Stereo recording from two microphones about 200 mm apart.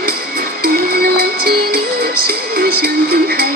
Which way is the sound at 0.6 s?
50° right (ahead or behind).